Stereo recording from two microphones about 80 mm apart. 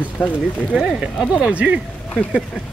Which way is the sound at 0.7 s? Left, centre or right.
Centre.